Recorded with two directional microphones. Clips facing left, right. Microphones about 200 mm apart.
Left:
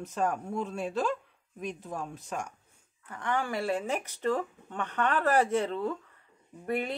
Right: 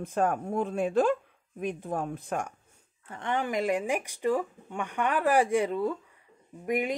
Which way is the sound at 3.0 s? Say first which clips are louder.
Right 1 dB; 25° right (ahead or behind).